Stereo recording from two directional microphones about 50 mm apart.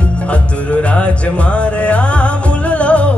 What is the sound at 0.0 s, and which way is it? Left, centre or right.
Music, left.